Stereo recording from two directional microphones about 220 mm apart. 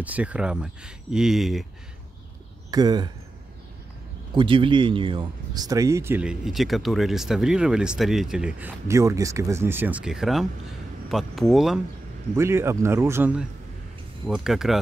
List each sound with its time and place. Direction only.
0.0 s speech: 5° right (ahead or behind)
2.7 s speech: 20° right (ahead or behind)
4.3 s speech: 20° right (ahead or behind); by 11.8 s centre (ahead or behind)
12.4 s speech: 10° right (ahead or behind)